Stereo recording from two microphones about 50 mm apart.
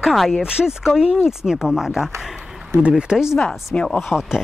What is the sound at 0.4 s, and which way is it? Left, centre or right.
Speech, centre.